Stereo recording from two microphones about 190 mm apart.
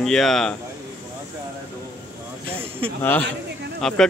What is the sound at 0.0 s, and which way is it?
Speech, centre (ahead or behind).